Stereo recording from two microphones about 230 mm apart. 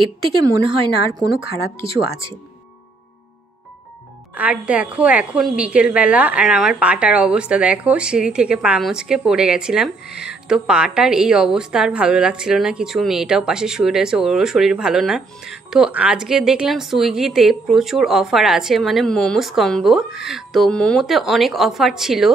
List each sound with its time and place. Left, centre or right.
1.4 s speech: right
4.4 s a woman's voice: centre